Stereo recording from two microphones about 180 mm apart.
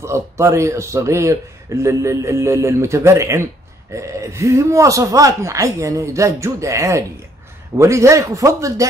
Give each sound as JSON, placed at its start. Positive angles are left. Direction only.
{"t": 0.0, "sound": "speech", "side_deg": -15}